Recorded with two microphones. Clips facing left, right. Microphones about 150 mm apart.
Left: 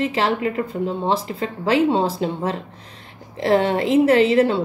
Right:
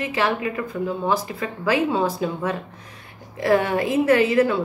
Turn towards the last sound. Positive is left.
turn(degrees=25)  # may be behind; listen again after turning